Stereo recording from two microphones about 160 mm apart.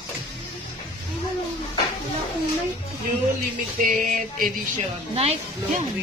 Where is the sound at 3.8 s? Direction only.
60° right (ahead or behind).